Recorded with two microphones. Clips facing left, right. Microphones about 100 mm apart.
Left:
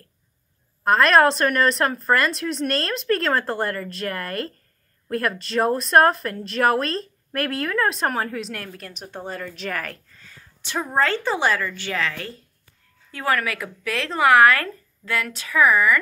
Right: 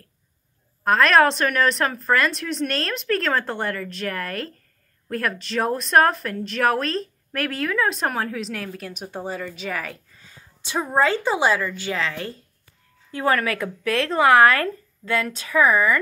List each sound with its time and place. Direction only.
0.8 s speech: centre (ahead or behind)
10.1 s a sound: 15° right (ahead or behind)
10.9 s speech: 15° right (ahead or behind); by 16.0 s 30° right (ahead or behind)